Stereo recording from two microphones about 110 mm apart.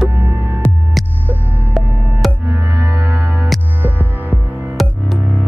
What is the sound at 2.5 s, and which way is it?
Music, 35° right (ahead or behind).